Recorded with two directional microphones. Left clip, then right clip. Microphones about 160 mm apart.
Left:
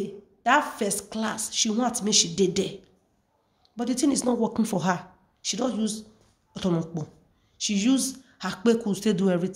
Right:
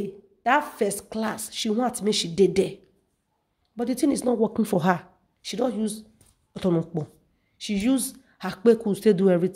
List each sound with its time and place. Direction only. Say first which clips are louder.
0.0 s speech: even; 45° right (ahead or behind)